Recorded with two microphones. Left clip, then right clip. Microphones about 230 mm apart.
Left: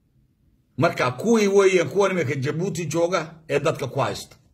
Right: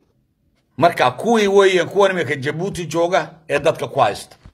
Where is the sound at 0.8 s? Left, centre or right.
Centre.